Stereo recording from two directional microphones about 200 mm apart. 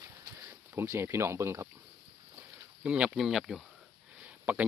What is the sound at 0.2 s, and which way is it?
Speech, 10° right (ahead or behind).